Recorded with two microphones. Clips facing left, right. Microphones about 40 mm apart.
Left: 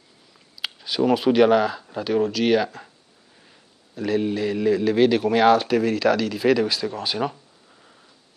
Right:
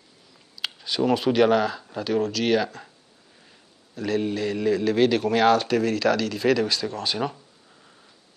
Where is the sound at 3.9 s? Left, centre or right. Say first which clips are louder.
Left 2 dB; centre.